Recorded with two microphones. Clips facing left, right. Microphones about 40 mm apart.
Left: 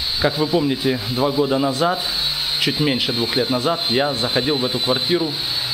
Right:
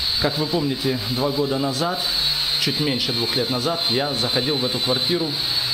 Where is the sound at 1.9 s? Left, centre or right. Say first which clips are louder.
Even; centre.